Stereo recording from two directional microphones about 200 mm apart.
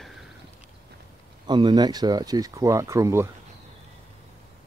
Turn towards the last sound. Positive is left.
turn(degrees=-15)  # may be behind; listen again after turning